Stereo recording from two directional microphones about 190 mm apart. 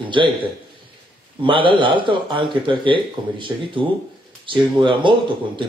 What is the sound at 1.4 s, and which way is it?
Speech, 25° right (ahead or behind).